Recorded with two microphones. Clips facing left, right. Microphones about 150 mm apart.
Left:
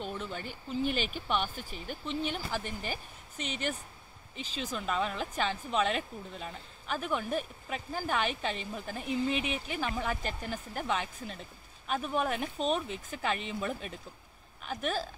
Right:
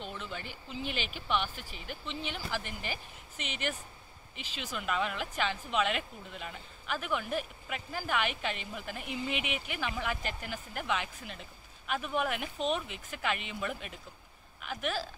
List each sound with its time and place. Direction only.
0.0 s speech: 45° left (ahead or behind)